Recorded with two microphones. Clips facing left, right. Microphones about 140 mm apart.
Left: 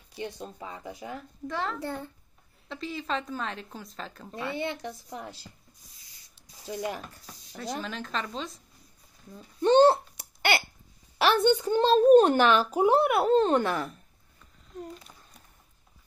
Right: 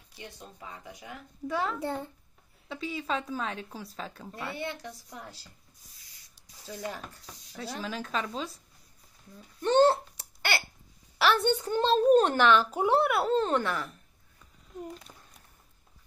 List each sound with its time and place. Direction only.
0.2 s speech: 25° left (ahead or behind)
1.5 s a woman's voice: 5° right (ahead or behind)
1.8 s a child's voice: 20° right (ahead or behind)
2.7 s a woman's voice: 5° right (ahead or behind)
4.3 s speech: 20° left (ahead or behind)
6.6 s a child's voice: 15° left (ahead or behind)
7.8 s a woman's voice: 5° right (ahead or behind)
9.6 s a sound: 20° left (ahead or behind)
11.1 s a child's voice: 20° left (ahead or behind)